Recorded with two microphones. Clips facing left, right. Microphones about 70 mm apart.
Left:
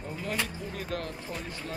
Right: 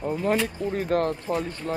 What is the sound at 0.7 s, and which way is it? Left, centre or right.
Speech, right.